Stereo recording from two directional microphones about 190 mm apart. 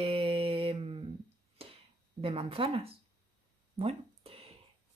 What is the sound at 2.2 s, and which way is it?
Speech, 30° right (ahead or behind).